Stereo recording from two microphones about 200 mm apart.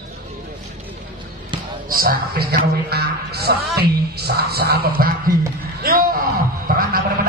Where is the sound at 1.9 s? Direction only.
45° right (ahead or behind).